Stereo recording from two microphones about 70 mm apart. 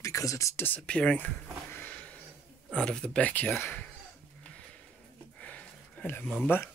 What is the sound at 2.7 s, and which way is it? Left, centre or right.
Speech, centre.